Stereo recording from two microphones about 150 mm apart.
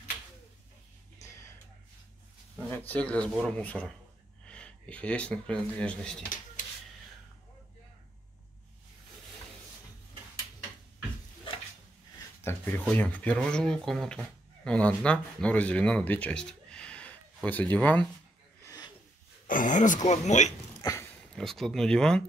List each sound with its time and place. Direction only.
2.5 s speech: 10° left (ahead or behind)
12.4 s a sound: 15° left (ahead or behind)
12.9 s speech: 10° left (ahead or behind)
19.4 s speech: 60° left (ahead or behind)
20.8 s a sound: 20° left (ahead or behind)
21.4 s speech: centre (ahead or behind)